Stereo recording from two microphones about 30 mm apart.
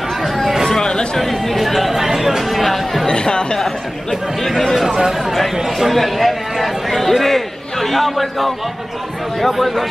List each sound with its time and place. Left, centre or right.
0.7 s a sound: left
1.1 s a man's voice: centre
3.1 s speech: left
3.5 s a man's voice: centre
4.8 s speech: centre
5.2 s a man's voice: centre
9.6 s a man's voice: centre